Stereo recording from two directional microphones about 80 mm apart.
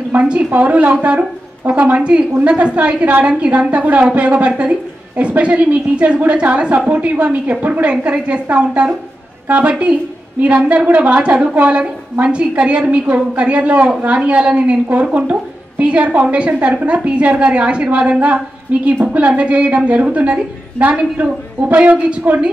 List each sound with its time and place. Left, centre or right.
0.1 s a woman's voice: centre